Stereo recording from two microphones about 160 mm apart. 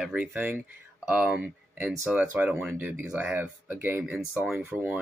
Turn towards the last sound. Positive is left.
turn(degrees=-5)  # may be behind; listen again after turning